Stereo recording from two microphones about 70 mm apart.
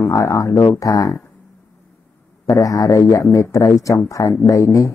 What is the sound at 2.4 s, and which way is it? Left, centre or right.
A man's voice, left.